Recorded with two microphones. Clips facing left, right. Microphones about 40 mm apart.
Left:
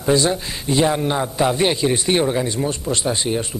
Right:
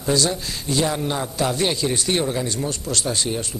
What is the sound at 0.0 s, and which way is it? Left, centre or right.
A man's voice, left.